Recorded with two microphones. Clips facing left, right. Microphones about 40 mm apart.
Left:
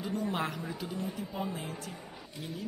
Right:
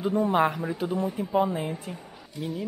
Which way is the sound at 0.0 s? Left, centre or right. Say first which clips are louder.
Right 10 dB; right.